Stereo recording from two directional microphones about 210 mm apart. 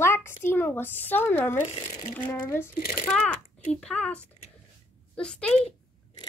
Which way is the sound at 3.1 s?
5° left (ahead or behind).